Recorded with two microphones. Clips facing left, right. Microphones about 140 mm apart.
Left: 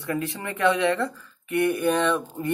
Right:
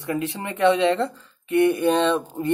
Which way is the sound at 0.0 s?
20° right (ahead or behind).